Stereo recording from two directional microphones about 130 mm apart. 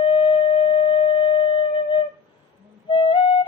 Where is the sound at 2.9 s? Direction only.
40° left (ahead or behind).